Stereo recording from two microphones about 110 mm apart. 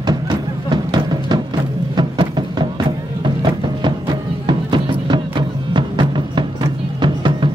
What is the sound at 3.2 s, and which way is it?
Music, 45° right (ahead or behind).